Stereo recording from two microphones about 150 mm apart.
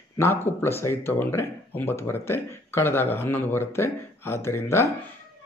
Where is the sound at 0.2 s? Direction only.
15° left (ahead or behind).